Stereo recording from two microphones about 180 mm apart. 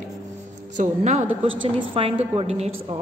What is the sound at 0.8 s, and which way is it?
Speech, 40° right (ahead or behind).